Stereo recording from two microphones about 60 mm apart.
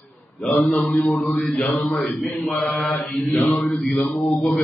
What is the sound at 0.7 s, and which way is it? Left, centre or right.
Mantra, centre.